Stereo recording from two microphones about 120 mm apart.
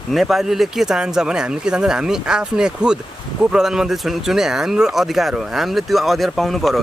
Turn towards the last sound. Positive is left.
turn(degrees=0)  # may be behind; listen again after turning